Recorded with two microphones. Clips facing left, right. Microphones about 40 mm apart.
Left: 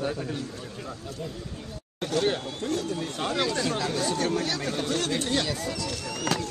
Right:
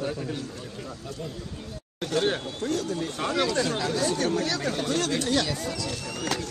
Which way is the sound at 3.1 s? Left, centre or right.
Right.